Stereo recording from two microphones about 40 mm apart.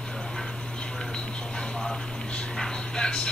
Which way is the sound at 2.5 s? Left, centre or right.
Centre.